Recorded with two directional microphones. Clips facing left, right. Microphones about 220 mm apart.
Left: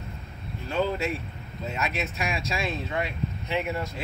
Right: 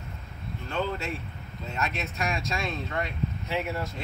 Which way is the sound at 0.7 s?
10° left (ahead or behind).